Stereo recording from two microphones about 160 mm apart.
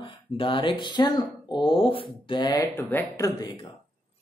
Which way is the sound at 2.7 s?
15° left (ahead or behind).